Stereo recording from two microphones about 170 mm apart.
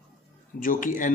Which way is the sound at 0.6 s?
50° left (ahead or behind).